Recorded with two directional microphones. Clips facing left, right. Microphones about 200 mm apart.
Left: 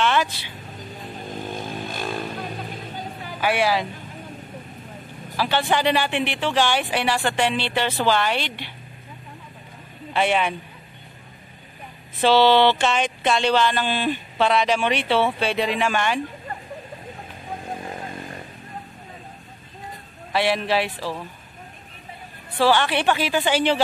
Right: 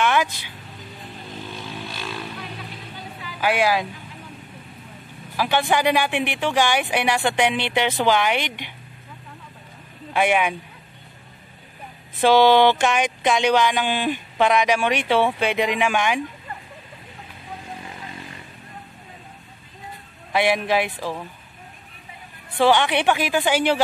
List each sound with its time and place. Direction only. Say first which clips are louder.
0.0 s vehicle: right 1 dB; 10° right (ahead or behind)
1.3 s vehicle: left 4 dB; 45° left (ahead or behind)
3.3 s speech: right 1 dB; 10° right (ahead or behind)
5.4 s speech: right 1 dB; 10° right (ahead or behind)
10.1 s speech: right 1 dB; 10° right (ahead or behind)
12.2 s speech: right 1 dB; 15° right (ahead or behind)
17.5 s chainsaw: left 5 dB; 50° left (ahead or behind)
20.3 s speech: right 1 dB; 15° right (ahead or behind)
22.6 s speech: right 1 dB; 15° right (ahead or behind)